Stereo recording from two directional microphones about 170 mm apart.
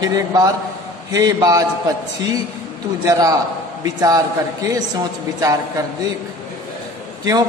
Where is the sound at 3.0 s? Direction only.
20° right (ahead or behind).